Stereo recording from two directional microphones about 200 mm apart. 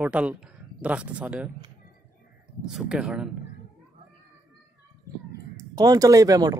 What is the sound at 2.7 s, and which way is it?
Speech, 5° right (ahead or behind).